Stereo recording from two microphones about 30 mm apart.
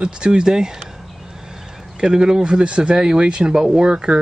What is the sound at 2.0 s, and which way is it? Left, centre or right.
Speech, right.